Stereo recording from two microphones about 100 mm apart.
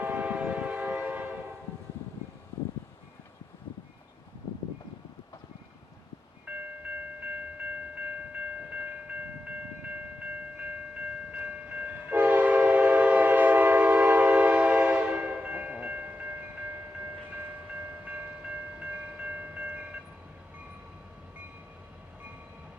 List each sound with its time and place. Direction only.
0.0 s train: 15° right (ahead or behind)
6.5 s tubular bells: 10° right (ahead or behind)
11.3 s train: 15° right (ahead or behind)
18.8 s train: 15° right (ahead or behind)